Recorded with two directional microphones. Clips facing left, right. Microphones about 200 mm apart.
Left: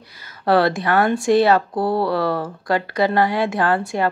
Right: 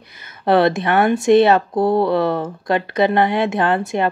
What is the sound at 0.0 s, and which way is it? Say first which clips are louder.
A woman's voice: right 2 dB; 20° right (ahead or behind).